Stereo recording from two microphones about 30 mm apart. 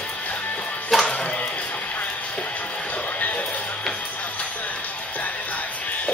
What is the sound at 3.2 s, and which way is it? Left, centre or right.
Music, left.